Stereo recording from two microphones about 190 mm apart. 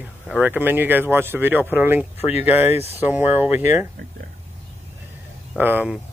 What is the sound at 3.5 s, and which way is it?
Speech, 35° left (ahead or behind).